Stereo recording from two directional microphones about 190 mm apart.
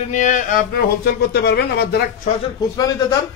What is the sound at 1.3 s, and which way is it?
Speech, 60° left (ahead or behind).